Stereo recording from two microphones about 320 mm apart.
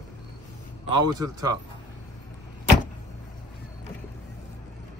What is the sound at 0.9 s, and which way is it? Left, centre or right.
Speech, centre.